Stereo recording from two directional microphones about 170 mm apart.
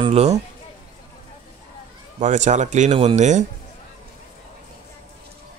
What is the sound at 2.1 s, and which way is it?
Speech, 45° right (ahead or behind).